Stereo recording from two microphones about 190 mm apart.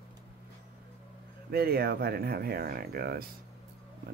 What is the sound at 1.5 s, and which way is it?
Speech, 55° right (ahead or behind).